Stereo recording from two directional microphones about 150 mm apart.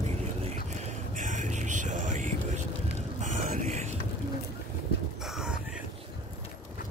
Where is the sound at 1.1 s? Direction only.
60° right (ahead or behind).